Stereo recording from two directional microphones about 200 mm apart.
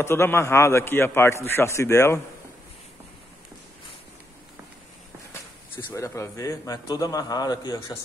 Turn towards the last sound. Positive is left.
turn(degrees=20)  # may be behind; listen again after turning